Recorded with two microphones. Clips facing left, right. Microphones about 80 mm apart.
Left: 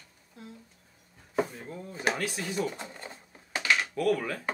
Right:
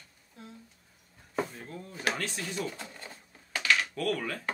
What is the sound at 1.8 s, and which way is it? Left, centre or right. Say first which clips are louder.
Speech: left 3 dB; left.